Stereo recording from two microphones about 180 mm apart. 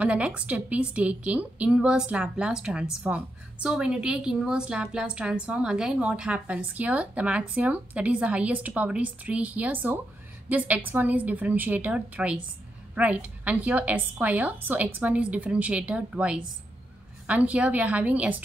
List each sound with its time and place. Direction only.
0.0 s a woman's voice: 5° right (ahead or behind)